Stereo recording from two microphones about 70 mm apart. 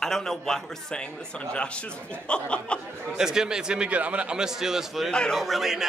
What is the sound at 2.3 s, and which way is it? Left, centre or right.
Speech, centre.